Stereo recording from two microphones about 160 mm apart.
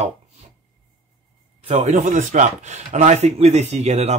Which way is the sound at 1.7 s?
45° right (ahead or behind).